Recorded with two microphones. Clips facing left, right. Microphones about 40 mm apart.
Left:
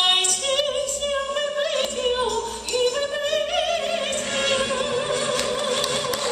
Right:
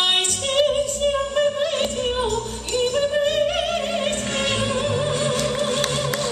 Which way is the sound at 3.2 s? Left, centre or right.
Centre.